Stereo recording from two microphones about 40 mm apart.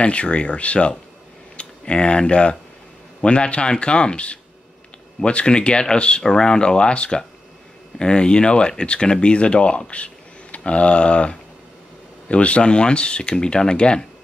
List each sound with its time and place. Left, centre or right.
0.0 s speech: left